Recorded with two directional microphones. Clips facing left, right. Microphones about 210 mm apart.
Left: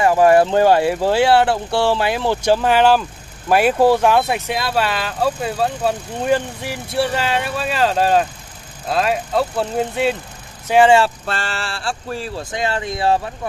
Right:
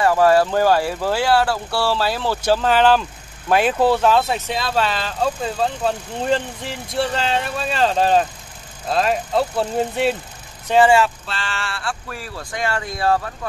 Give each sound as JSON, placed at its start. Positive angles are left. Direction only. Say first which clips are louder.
{"t": 0.0, "sound": "speech", "louder": "left 2 dB", "side_deg": 15}
{"t": 10.7, "sound": "speech", "louder": "left 2 dB", "side_deg": 15}
{"t": 11.2, "sound": "speech", "louder": "left 4 dB", "side_deg": 45}